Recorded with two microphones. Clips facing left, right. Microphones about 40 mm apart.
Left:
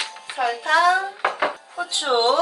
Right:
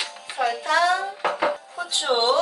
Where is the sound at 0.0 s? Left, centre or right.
Centre.